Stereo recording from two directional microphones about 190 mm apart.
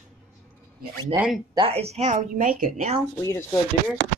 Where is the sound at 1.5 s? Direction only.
30° right (ahead or behind).